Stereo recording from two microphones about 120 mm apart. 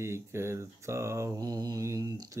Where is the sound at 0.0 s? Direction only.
20° right (ahead or behind).